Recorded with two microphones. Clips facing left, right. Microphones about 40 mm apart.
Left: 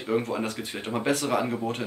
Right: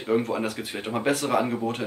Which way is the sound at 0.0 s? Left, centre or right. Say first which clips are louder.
Right 2 dB; centre.